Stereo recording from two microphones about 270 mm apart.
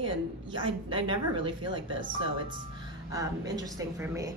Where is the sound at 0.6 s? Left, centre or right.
Centre.